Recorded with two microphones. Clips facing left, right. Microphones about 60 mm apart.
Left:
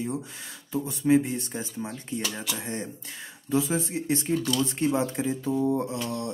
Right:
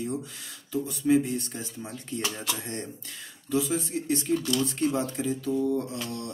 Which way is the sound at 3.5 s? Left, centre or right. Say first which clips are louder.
Left 1 dB; left.